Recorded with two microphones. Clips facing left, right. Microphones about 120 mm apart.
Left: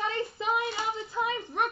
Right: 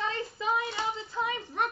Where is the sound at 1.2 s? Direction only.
20° left (ahead or behind).